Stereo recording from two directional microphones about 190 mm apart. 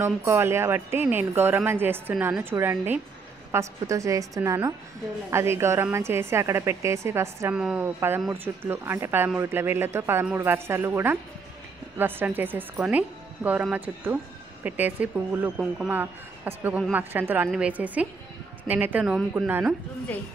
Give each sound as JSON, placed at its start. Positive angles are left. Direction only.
{"t": 0.0, "sound": "speech", "side_deg": -15}